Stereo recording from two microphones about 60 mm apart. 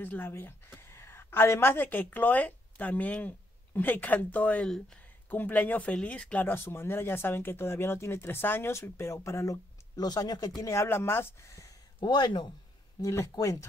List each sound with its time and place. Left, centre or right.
0.0 s a woman's voice: left
4.6 s speech: centre
5.3 s speech: left
6.4 s speech: left
9.9 s speech: left
10.7 s speech: left
13.0 s speech: left